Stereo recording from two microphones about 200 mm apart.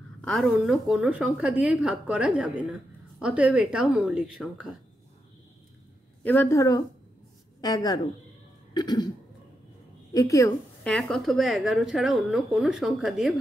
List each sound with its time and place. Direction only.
0.2 s a woman's voice: centre (ahead or behind)
6.2 s a woman's voice: 10° left (ahead or behind)
10.1 s a woman's voice: 15° left (ahead or behind); by 13.3 s centre (ahead or behind)